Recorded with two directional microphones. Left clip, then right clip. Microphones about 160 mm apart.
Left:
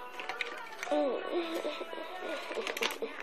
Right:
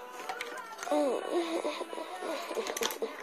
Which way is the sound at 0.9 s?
20° right (ahead or behind).